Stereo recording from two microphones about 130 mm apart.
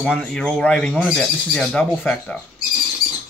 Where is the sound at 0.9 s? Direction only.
5° right (ahead or behind).